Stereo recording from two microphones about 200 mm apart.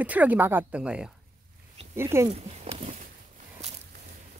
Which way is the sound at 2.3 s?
30° right (ahead or behind).